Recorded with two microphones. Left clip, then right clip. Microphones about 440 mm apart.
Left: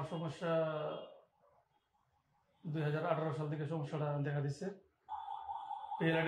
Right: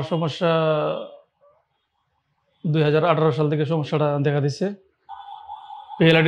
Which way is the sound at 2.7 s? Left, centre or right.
Right.